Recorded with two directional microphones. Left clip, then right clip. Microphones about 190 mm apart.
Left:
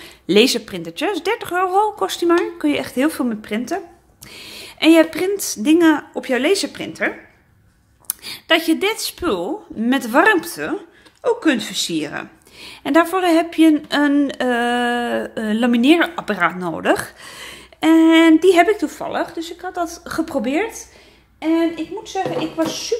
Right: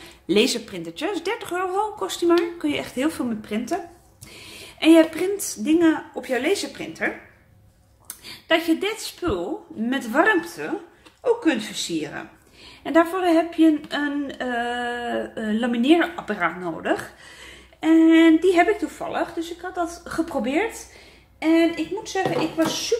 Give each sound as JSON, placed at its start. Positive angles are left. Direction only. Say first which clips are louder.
{"t": 0.0, "sound": "a woman's voice", "louder": "left 6 dB", "side_deg": 30}
{"t": 8.1, "sound": "a woman's voice", "louder": "left 5 dB", "side_deg": 45}
{"t": 21.4, "sound": "speech", "louder": "left 1 dB", "side_deg": 15}